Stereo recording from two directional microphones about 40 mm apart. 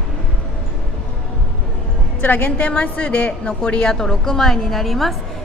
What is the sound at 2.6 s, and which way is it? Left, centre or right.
Speech, left.